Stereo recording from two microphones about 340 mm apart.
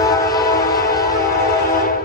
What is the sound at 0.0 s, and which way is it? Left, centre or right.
Train, centre.